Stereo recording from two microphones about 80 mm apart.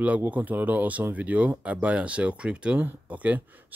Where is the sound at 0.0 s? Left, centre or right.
Centre.